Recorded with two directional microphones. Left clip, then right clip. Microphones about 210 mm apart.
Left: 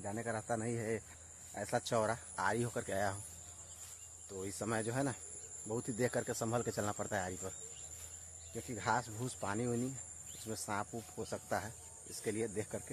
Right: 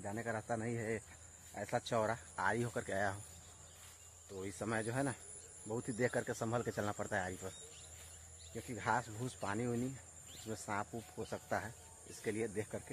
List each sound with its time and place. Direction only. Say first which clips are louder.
0.0 s speech: left 1 dB; 5° left (ahead or behind)
4.3 s speech: left 1 dB; 10° left (ahead or behind)
8.5 s speech: left 1 dB; 15° left (ahead or behind)